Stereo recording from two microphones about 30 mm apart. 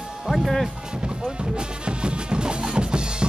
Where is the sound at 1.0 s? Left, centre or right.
Right.